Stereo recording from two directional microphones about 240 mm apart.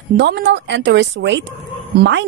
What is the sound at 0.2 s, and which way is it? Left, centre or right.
A woman's voice, right.